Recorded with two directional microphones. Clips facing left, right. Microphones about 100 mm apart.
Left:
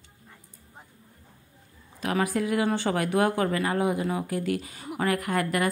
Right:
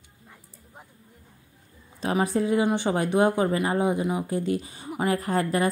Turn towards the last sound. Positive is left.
turn(degrees=-30)  # may be behind; listen again after turning